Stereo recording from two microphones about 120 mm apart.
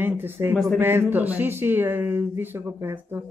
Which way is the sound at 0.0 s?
15° right (ahead or behind).